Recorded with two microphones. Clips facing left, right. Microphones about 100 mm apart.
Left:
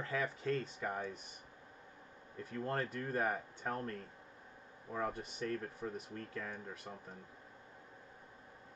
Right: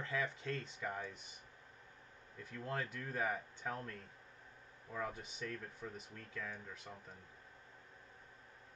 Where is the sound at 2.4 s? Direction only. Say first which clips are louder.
Left 4 dB; centre (ahead or behind).